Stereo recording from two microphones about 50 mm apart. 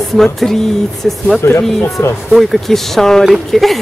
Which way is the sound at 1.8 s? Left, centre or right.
Left.